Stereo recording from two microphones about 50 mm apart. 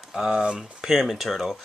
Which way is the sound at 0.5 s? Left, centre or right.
Centre.